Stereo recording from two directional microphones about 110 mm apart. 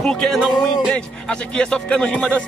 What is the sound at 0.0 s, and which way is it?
Speech, 5° left (ahead or behind).